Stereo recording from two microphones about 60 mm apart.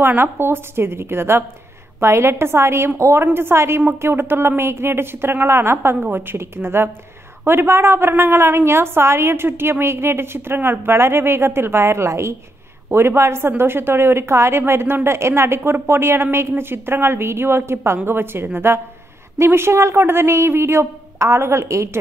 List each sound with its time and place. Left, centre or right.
0.0 s a woman's voice: right